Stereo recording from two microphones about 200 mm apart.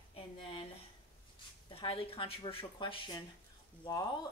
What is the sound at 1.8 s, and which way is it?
A woman's voice, 25° left (ahead or behind).